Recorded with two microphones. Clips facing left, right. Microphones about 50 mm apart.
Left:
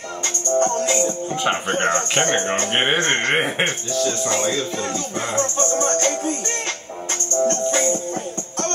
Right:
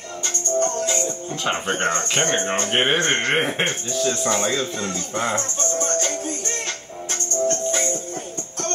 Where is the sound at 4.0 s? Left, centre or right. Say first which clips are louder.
Even; centre.